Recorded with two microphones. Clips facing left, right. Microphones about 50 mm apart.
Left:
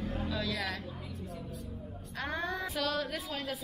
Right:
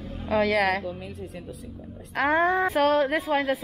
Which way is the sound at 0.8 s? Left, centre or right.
Right.